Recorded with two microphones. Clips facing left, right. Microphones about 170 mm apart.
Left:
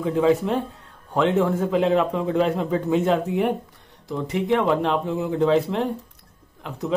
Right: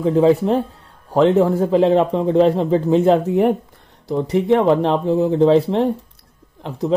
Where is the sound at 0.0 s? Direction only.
30° right (ahead or behind).